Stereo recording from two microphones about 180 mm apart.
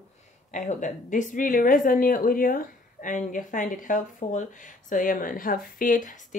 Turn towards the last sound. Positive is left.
turn(degrees=45)  # may be behind; listen again after turning